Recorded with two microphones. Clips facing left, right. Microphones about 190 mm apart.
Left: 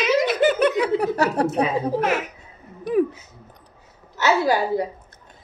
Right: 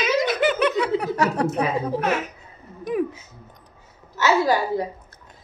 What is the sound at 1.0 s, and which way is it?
Speech, 35° left (ahead or behind).